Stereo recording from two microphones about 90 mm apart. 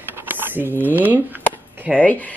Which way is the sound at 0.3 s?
20° right (ahead or behind).